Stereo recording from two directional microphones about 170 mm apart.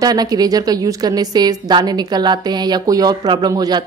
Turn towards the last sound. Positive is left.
turn(degrees=-20)  # may be behind; listen again after turning